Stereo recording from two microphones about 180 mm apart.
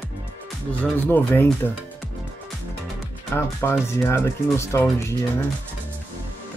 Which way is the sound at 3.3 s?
15° left (ahead or behind).